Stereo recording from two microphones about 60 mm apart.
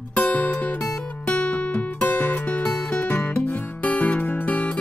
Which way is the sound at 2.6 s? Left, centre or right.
Centre.